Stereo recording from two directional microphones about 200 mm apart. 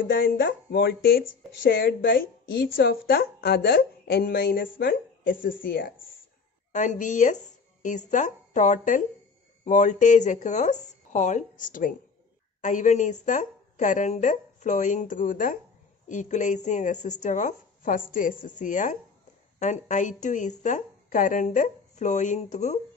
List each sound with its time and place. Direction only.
0.0 s a woman's voice: 50° left (ahead or behind)